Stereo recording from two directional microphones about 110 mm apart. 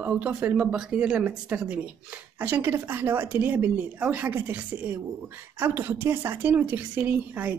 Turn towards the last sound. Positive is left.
turn(degrees=-15)  # may be behind; listen again after turning